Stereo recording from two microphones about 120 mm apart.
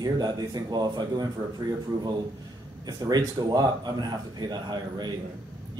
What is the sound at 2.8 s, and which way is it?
Speech, 30° right (ahead or behind).